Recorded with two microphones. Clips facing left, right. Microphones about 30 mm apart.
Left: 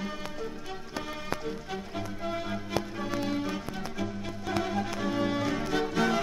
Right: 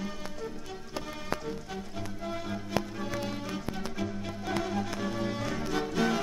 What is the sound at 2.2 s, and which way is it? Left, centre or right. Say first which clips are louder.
Music: left 2 dB; centre.